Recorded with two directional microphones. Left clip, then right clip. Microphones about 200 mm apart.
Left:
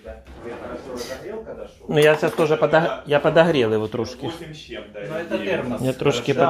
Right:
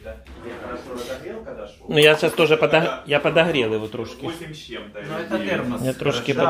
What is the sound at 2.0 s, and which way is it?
Speech, 10° right (ahead or behind).